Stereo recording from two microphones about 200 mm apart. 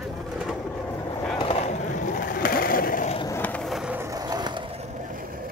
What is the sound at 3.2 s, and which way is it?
Skateboard, 15° left (ahead or behind).